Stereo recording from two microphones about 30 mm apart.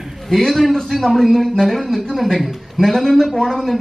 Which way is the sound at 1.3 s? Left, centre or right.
Centre.